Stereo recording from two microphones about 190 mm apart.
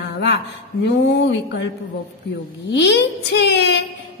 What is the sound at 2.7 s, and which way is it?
A woman's voice, 65° left (ahead or behind).